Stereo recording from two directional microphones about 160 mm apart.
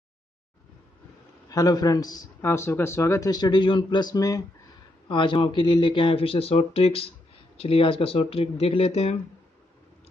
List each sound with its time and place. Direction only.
1.5 s a man's voice: 25° left (ahead or behind); by 9.1 s 40° left (ahead or behind)